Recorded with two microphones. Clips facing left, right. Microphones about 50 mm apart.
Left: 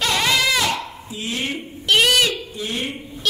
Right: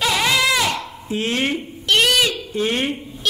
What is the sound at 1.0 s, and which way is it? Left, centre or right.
Speech, right.